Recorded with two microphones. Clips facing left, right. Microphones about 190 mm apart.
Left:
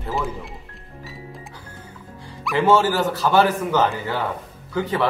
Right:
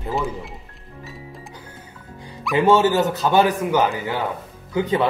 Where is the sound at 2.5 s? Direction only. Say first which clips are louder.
Right 2 dB; 15° right (ahead or behind).